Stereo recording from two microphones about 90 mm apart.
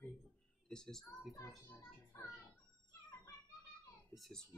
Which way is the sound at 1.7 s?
25° left (ahead or behind).